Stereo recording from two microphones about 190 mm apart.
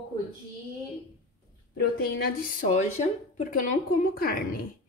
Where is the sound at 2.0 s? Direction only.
50° left (ahead or behind).